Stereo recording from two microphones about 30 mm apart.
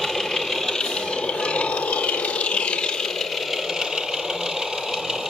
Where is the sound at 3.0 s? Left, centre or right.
Centre.